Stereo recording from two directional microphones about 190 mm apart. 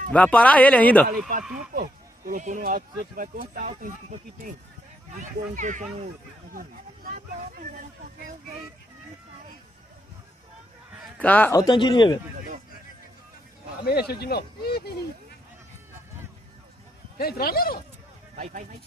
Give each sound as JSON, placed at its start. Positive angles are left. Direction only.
{"t": 0.1, "sound": "speech", "side_deg": 5}
{"t": 1.7, "sound": "speech", "side_deg": -50}
{"t": 11.1, "sound": "speech", "side_deg": 10}
{"t": 11.6, "sound": "speech", "side_deg": 25}
{"t": 13.8, "sound": "speech", "side_deg": 55}
{"t": 17.2, "sound": "speech", "side_deg": 55}
{"t": 18.3, "sound": "speech", "side_deg": -45}